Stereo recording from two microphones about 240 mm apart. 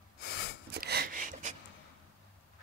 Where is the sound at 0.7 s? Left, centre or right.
Right.